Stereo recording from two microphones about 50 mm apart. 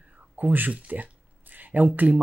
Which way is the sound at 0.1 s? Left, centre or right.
Right.